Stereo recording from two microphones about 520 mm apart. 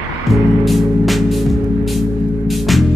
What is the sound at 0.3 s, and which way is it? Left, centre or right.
Music, centre.